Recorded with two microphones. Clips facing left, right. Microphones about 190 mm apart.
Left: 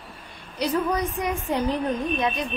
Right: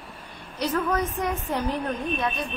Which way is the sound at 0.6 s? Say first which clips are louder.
Left 1 dB; 15° left (ahead or behind).